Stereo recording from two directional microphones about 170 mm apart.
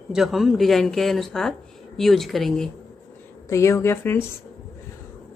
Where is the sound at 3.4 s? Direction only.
15° left (ahead or behind).